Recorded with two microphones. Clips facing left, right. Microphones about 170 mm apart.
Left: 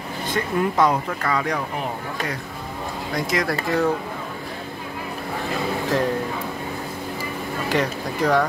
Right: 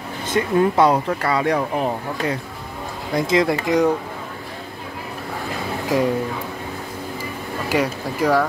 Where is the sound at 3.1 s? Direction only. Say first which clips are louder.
Right 6 dB; 25° right (ahead or behind).